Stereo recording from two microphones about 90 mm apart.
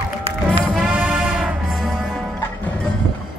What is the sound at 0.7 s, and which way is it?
Music, 5° right (ahead or behind).